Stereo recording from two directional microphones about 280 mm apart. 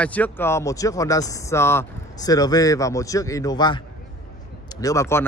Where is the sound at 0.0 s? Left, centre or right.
Centre.